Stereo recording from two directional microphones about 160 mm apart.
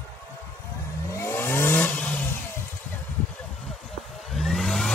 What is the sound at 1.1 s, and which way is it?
Vehicle, 15° left (ahead or behind).